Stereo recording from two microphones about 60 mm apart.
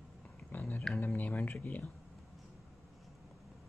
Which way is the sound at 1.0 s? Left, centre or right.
Left.